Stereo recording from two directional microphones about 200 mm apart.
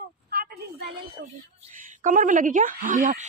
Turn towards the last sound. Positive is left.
turn(degrees=-40)  # may be behind; listen again after turning